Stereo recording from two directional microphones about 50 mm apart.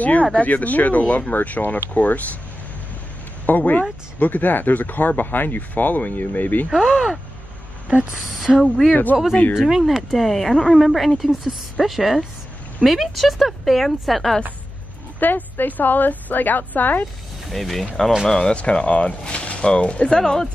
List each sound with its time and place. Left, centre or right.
0.4 s speech: left
3.4 s speech: left
6.7 s speech: centre
7.9 s speech: right
8.5 s speech: centre
9.3 s speech: left
9.6 s speech: centre
15.1 s speech: left
17.5 s speech: centre
18.5 s speech: left